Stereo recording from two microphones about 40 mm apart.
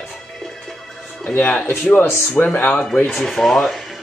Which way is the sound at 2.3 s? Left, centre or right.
Left.